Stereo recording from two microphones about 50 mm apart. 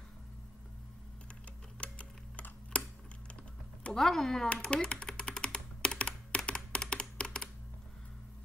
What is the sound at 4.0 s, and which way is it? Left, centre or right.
Speech, centre.